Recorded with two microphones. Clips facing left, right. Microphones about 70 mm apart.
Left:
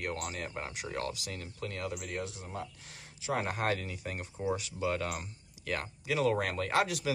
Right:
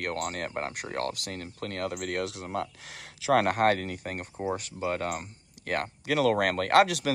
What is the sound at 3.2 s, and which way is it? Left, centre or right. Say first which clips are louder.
Speech: right 9 dB; right.